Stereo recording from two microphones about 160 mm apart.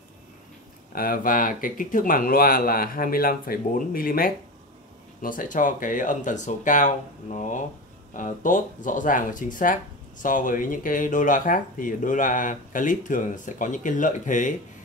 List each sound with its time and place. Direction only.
0.9 s speech: 65° left (ahead or behind)